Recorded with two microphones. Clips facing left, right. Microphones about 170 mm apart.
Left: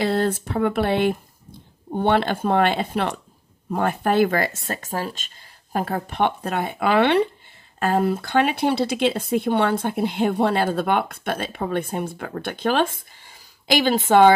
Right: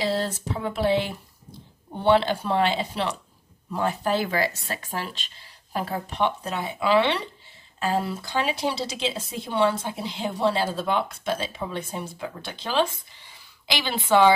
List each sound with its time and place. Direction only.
0.0 s speech: 55° left (ahead or behind)